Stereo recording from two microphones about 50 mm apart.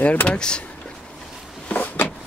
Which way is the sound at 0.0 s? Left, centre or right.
Left.